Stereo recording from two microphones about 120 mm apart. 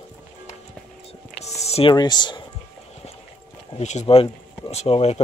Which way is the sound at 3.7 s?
70° left (ahead or behind).